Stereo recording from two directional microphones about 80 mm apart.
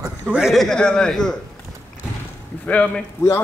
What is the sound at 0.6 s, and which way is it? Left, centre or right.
Speech, centre.